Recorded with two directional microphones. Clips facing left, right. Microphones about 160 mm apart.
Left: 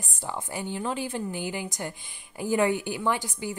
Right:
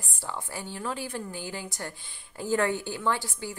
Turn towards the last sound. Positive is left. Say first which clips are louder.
# left 2 dB
turn(degrees=15)  # may be behind; listen again after turning